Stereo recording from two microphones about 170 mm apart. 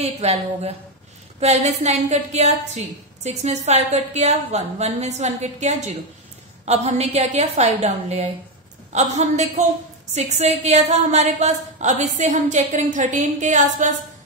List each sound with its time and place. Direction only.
0.0 s a woman's voice: 35° right (ahead or behind)